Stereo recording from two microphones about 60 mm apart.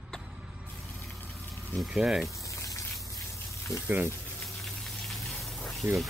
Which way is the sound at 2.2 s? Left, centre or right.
Left.